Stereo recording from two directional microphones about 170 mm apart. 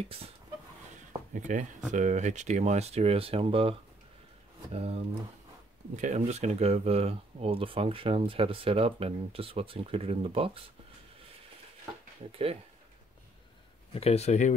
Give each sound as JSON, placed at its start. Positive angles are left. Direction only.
{"t": 1.3, "sound": "speech", "side_deg": -50}
{"t": 4.7, "sound": "speech", "side_deg": -35}
{"t": 12.3, "sound": "speech", "side_deg": -35}
{"t": 13.9, "sound": "speech", "side_deg": 35}